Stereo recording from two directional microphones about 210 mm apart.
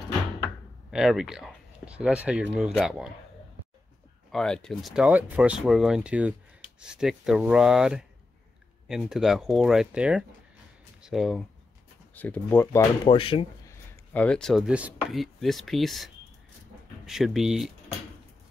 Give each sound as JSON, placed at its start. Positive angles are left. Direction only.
{"t": 0.9, "sound": "speech", "side_deg": 0}
{"t": 4.3, "sound": "speech", "side_deg": 5}
{"t": 13.1, "sound": "speech", "side_deg": 25}
{"t": 13.7, "sound": "speech", "side_deg": 5}